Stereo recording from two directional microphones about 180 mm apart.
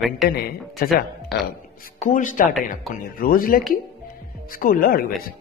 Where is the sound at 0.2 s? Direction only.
Centre (ahead or behind).